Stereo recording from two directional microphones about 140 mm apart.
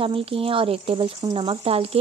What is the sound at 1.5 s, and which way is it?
Speech, 45° right (ahead or behind).